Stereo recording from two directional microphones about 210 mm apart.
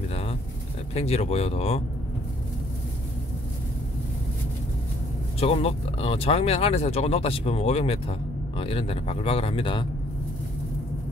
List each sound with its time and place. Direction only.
0.1 s pigeon: 30° left (ahead or behind)
0.9 s speech: 30° left (ahead or behind)
5.4 s speech: 30° left (ahead or behind)